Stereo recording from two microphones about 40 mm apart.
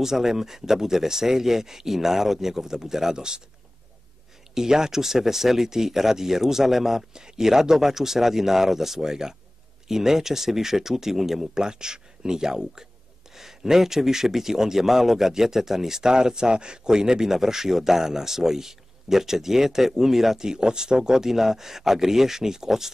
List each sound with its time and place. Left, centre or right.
0.0 s speech: centre
4.6 s speech: centre
11.6 s speech: centre